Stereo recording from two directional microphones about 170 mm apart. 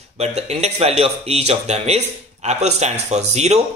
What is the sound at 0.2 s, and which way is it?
Speech, 40° right (ahead or behind).